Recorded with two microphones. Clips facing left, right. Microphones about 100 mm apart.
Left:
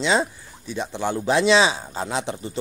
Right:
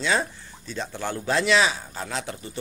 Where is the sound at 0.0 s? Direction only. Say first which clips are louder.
Left 4 dB; 20° left (ahead or behind).